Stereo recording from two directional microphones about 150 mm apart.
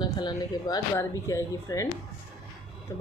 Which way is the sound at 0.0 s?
30° left (ahead or behind).